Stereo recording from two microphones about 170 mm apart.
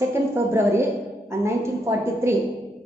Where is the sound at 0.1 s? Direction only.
15° right (ahead or behind).